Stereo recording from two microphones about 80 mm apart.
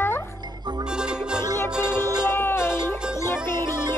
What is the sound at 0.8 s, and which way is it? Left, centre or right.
Music, centre.